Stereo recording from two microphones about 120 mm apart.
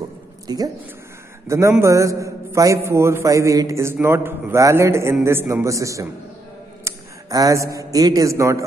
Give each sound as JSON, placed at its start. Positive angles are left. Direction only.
{"t": 0.5, "sound": "a woman's voice", "side_deg": -35}
{"t": 1.5, "sound": "a man's voice", "side_deg": -25}